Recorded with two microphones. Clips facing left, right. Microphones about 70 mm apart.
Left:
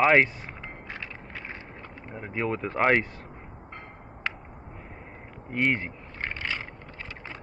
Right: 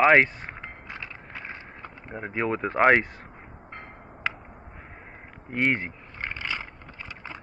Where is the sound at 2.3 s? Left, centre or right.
Centre.